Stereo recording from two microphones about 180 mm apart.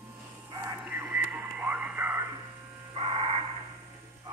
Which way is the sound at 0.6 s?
10° right (ahead or behind).